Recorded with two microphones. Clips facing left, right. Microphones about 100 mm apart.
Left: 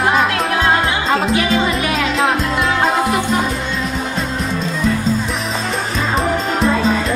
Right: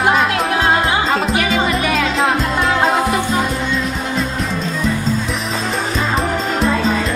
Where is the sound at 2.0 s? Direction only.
Centre (ahead or behind).